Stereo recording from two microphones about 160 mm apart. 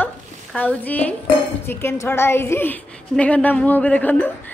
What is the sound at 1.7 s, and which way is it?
A woman's voice, 15° left (ahead or behind).